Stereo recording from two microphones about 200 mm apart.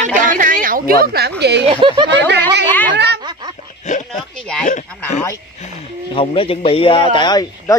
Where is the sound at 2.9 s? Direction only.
60° right (ahead or behind).